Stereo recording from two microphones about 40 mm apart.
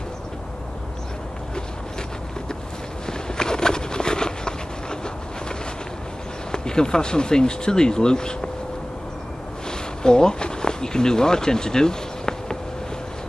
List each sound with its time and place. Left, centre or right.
3.1 s walk: centre
6.5 s speech: centre
9.7 s a sound: centre